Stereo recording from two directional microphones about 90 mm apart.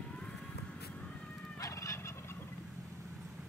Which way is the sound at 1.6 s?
35° left (ahead or behind).